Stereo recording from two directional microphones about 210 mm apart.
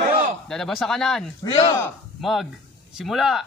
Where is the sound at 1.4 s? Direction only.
25° left (ahead or behind).